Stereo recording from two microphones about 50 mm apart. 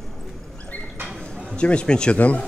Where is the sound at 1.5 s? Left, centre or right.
Left.